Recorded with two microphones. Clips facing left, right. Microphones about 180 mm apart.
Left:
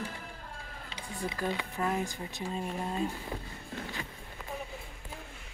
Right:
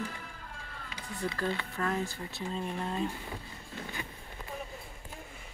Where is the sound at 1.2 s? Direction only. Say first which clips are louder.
Even; 15° left (ahead or behind).